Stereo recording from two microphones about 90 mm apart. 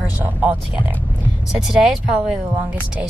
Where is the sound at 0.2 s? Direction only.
20° right (ahead or behind).